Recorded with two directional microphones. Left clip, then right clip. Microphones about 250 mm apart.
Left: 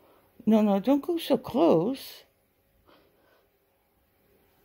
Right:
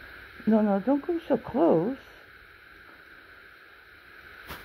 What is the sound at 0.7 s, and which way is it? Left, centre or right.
Speech, left.